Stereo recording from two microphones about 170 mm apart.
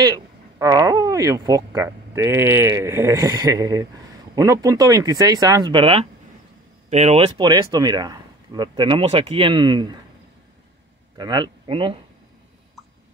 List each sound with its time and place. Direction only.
0.0 s speech: 20° right (ahead or behind)
11.1 s speech: 25° right (ahead or behind)